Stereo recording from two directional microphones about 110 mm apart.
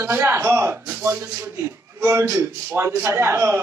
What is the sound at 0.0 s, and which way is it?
A man's voice, 20° right (ahead or behind).